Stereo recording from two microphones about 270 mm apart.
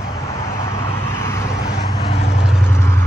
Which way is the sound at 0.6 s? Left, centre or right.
Centre.